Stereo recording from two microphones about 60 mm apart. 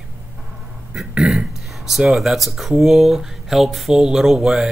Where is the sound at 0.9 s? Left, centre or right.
Centre.